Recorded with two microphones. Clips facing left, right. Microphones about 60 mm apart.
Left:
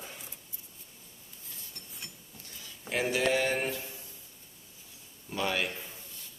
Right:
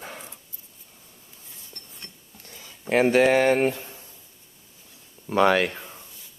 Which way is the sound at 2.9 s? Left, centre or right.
Right.